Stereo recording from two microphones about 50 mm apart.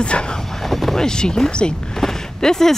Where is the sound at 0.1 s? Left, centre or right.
Left.